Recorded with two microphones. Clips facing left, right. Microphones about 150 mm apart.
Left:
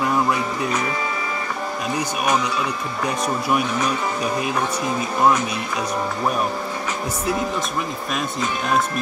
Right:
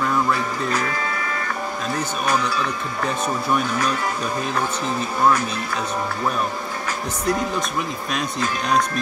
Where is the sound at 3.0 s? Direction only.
10° left (ahead or behind).